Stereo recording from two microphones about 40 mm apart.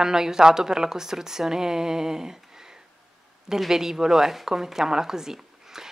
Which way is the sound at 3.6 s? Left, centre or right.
Centre.